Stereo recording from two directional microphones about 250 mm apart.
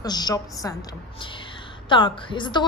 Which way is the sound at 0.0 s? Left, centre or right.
Centre.